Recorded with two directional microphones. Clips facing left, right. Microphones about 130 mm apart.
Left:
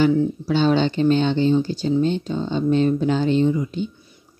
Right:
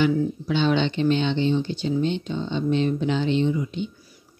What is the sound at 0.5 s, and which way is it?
Speech, 40° left (ahead or behind).